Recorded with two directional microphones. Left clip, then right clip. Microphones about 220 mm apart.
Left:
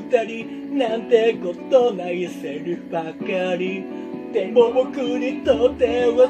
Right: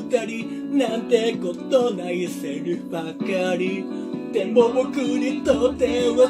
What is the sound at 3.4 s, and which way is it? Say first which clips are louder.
Music: even; 15° right (ahead or behind).